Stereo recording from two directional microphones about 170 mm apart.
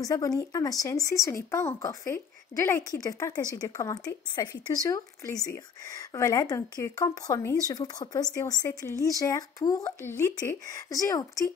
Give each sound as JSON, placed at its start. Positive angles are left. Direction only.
{"t": 0.0, "sound": "speech", "side_deg": 20}